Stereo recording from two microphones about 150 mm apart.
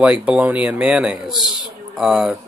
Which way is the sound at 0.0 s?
5° right (ahead or behind).